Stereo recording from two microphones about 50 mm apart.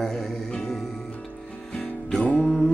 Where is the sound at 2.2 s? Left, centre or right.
Left.